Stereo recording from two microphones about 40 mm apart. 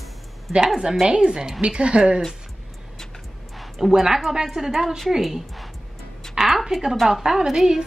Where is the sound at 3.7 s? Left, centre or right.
Centre.